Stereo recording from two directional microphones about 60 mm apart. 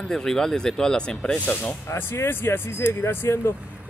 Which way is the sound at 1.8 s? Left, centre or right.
Left.